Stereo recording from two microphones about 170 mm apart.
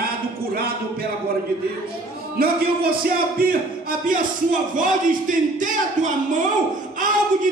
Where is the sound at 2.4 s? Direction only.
65° right (ahead or behind).